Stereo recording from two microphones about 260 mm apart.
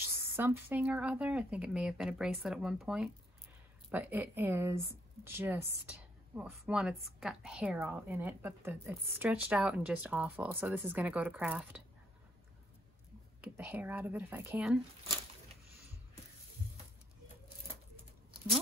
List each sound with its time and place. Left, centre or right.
0.0 s speech: centre
13.4 s speech: centre